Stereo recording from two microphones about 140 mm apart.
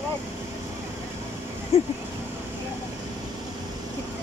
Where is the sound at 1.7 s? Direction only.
45° left (ahead or behind).